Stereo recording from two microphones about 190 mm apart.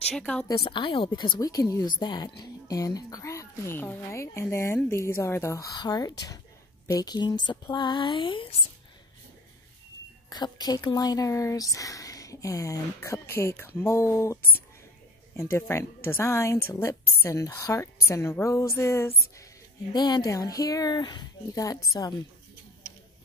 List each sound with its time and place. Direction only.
0.1 s a woman's voice: 5° left (ahead or behind)
0.5 s a woman's voice: 25° left (ahead or behind)
10.3 s a woman's voice: 20° left (ahead or behind)
15.5 s a woman's voice: 15° left (ahead or behind)